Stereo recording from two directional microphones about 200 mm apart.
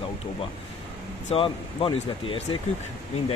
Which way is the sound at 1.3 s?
25° left (ahead or behind).